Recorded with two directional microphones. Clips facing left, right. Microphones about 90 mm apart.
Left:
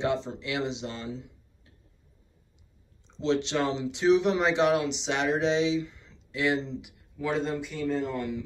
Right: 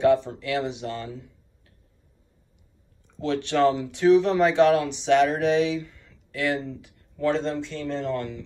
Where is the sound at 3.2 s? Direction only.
20° left (ahead or behind).